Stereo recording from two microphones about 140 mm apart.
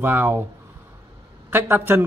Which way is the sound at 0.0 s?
15° right (ahead or behind).